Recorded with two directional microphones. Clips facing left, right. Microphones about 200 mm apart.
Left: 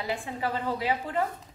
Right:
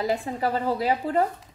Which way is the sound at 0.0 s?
40° right (ahead or behind).